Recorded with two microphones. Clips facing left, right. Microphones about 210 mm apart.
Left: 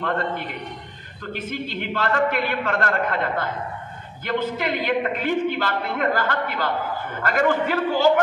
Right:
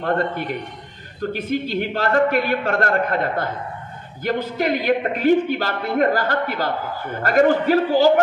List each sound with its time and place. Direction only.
1.2 s a man's voice: 40° right (ahead or behind)